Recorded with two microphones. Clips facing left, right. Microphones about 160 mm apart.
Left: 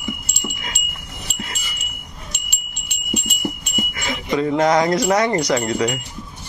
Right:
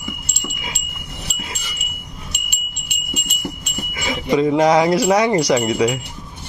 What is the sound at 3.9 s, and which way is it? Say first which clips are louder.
Speech: right 5 dB; 10° right (ahead or behind).